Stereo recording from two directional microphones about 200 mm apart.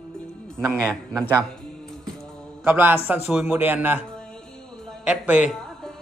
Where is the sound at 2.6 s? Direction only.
10° right (ahead or behind).